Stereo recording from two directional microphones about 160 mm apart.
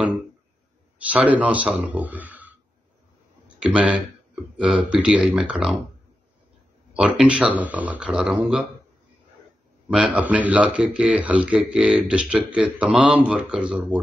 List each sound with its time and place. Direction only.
1.0 s speech: 10° right (ahead or behind)
3.5 s speech: 5° right (ahead or behind)
7.0 s speech: 5° right (ahead or behind)
10.1 s speech: 10° right (ahead or behind)